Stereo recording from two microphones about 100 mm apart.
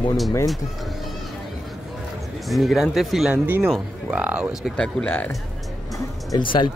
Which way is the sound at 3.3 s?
20° right (ahead or behind).